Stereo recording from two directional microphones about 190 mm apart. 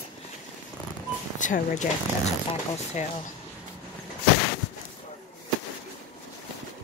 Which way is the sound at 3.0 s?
35° left (ahead or behind).